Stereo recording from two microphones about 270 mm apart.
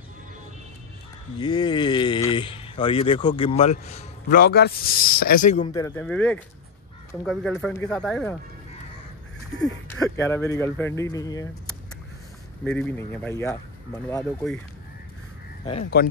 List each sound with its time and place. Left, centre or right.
1.4 s speech: centre
4.4 s speech: left
5.7 s speech: centre
9.6 s speech: centre
12.6 s speech: centre
15.8 s speech: left